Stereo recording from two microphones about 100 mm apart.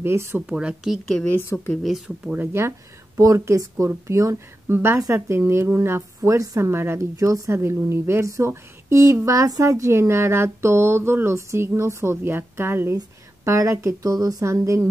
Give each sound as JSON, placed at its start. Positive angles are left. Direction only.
{"t": 0.0, "sound": "a woman's voice", "side_deg": -25}
{"t": 0.5, "sound": "speech", "side_deg": -10}
{"t": 2.3, "sound": "a woman's voice", "side_deg": -20}